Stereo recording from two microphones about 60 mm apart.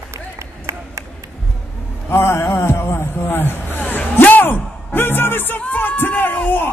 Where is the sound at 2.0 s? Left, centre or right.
Left.